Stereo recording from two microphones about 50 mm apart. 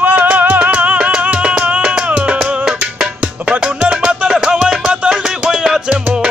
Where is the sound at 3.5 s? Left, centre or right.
Right.